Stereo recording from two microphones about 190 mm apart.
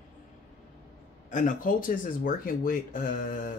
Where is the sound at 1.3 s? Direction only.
45° left (ahead or behind).